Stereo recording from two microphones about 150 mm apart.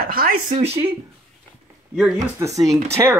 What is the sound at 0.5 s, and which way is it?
Speech, 40° right (ahead or behind).